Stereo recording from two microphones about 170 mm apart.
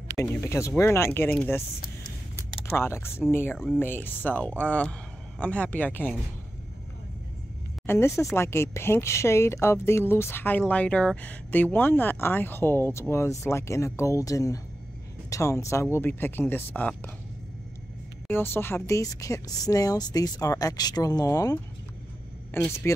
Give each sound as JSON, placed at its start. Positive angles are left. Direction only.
{"t": 0.2, "sound": "speech", "side_deg": 15}
{"t": 2.7, "sound": "speech", "side_deg": 15}
{"t": 7.8, "sound": "speech", "side_deg": 15}
{"t": 18.3, "sound": "speech", "side_deg": 15}